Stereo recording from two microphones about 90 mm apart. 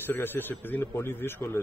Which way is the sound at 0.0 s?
25° left (ahead or behind).